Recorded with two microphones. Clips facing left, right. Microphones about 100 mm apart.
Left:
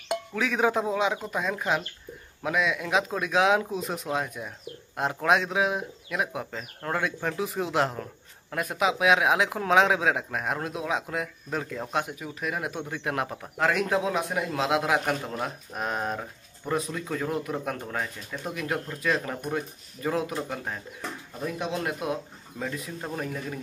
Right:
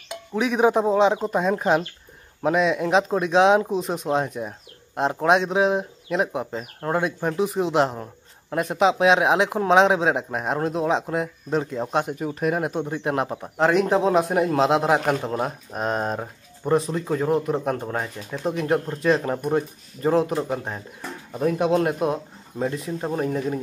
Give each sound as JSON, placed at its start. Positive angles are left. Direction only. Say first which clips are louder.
{"t": 0.3, "sound": "speech", "louder": "right 7 dB", "side_deg": -20}
{"t": 12.2, "sound": "speech", "louder": "right 8 dB", "side_deg": -45}
{"t": 20.3, "sound": "speech", "louder": "right 6 dB", "side_deg": -25}
{"t": 21.4, "sound": "speech", "louder": "right 11 dB", "side_deg": -50}
{"t": 22.6, "sound": "speech", "louder": "right 8 dB", "side_deg": -30}